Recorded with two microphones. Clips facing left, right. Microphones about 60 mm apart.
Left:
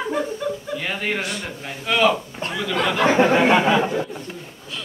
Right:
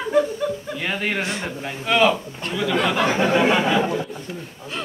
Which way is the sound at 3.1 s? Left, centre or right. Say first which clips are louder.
Left 5 dB; left.